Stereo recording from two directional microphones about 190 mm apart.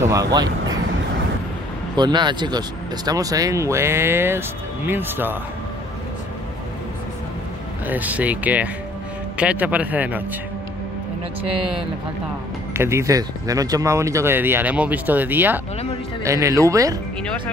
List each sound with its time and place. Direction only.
0.0 s speech: 15° right (ahead or behind)
2.0 s speech: 25° right (ahead or behind)
7.8 s speech: 10° right (ahead or behind)
12.7 s speech: 15° right (ahead or behind)